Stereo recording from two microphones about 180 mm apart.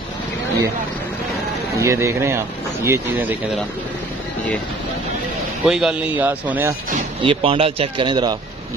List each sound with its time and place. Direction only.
1.8 s speech: 15° right (ahead or behind)
5.7 s speech: 5° right (ahead or behind)
7.2 s speech: 30° right (ahead or behind)